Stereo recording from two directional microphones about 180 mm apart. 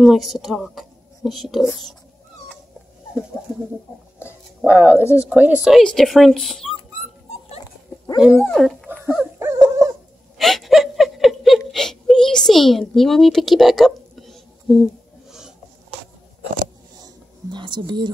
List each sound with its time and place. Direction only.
0.0 s speech: centre (ahead or behind)
4.6 s speech: 10° right (ahead or behind)
4.9 s speech: 15° left (ahead or behind)
5.3 s speech: 5° right (ahead or behind)
8.4 s speech: 5° left (ahead or behind)
8.8 s dog: 10° right (ahead or behind)
10.3 s a sound: centre (ahead or behind)
17.0 s a sound: 25° right (ahead or behind)